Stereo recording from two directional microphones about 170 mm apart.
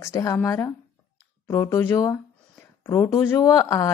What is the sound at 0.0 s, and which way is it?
A woman's voice, 20° left (ahead or behind).